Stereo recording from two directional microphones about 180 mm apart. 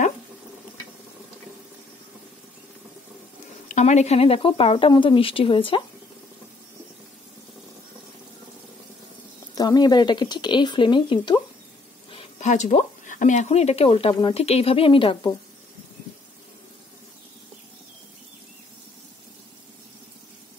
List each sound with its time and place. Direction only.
3.6 s a woman's voice: 40° left (ahead or behind)
9.6 s speech: 20° left (ahead or behind)